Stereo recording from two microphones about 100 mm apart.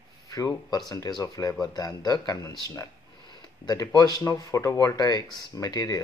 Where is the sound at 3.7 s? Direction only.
35° left (ahead or behind).